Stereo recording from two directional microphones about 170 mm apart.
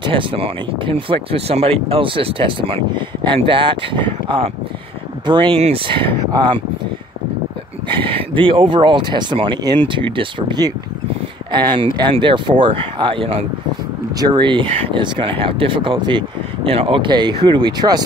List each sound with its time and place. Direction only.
0.0 s speech: 30° right (ahead or behind)
7.9 s speech: 30° right (ahead or behind)